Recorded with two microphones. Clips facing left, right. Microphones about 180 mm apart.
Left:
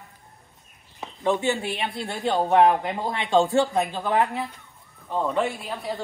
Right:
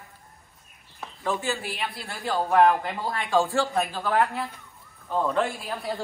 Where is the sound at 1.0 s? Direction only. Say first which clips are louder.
Left 5 dB; 20° left (ahead or behind).